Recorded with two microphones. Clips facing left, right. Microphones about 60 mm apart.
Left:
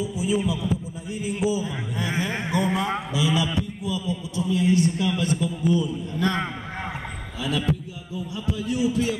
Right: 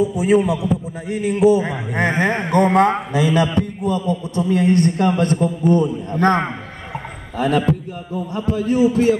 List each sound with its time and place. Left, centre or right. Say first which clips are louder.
0.0 s a man's voice: right 9 dB; right